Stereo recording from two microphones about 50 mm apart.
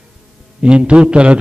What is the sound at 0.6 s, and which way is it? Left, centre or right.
Speech, right.